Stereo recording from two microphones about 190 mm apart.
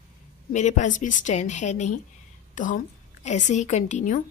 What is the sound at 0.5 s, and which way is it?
A woman's voice, 40° left (ahead or behind).